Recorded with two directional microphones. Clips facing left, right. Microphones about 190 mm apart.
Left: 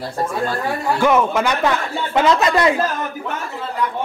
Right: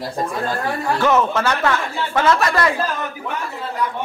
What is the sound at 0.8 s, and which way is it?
A man's voice, 10° left (ahead or behind).